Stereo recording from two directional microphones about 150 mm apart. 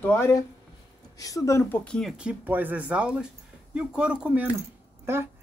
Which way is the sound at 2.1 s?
10° right (ahead or behind).